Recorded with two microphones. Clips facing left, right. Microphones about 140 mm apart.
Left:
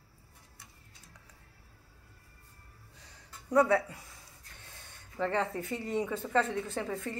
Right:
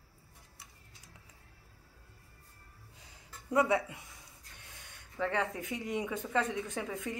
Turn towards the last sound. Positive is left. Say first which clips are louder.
# left 2 dB
turn(degrees=-10)  # may be behind; listen again after turning